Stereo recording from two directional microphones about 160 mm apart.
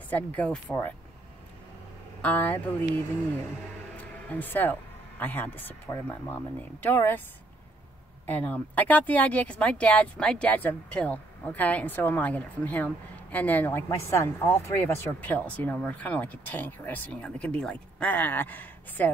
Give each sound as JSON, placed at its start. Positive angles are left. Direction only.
{"t": 0.1, "sound": "speech", "side_deg": 10}
{"t": 2.2, "sound": "speech", "side_deg": 10}
{"t": 3.9, "sound": "music", "side_deg": 10}
{"t": 5.2, "sound": "speech", "side_deg": 10}
{"t": 8.3, "sound": "speech", "side_deg": 10}